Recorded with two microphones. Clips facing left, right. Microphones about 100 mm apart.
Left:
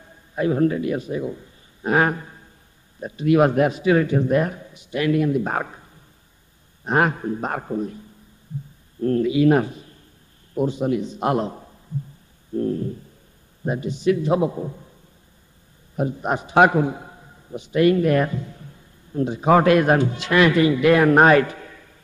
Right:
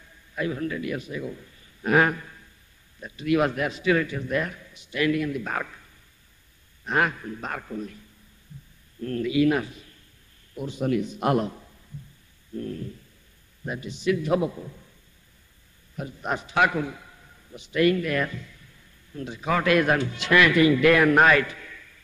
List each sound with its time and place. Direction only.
0.0 s a man's voice: 40° left (ahead or behind)
9.0 s a man's voice: 30° left (ahead or behind)
12.5 s a man's voice: 35° left (ahead or behind)
16.0 s a man's voice: 25° left (ahead or behind)
17.6 s a man's voice: 25° left (ahead or behind)